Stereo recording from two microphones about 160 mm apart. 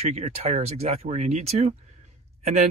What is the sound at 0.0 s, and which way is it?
Speech, 40° right (ahead or behind).